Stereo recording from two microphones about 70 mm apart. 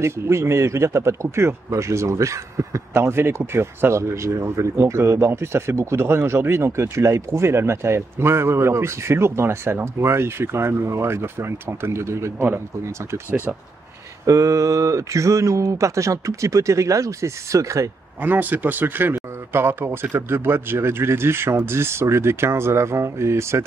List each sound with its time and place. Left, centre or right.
0.0 s speech: right
14.2 s speech: right
18.2 s speech: right